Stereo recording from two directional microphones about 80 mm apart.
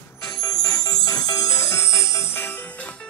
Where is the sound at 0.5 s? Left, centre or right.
Left.